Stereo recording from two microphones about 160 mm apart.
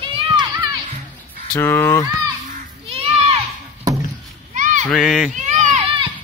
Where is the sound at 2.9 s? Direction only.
35° right (ahead or behind).